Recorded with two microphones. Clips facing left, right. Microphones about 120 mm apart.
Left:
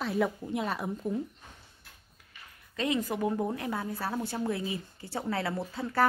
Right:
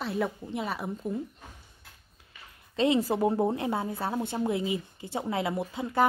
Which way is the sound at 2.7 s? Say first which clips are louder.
Right 5 dB; 30° right (ahead or behind).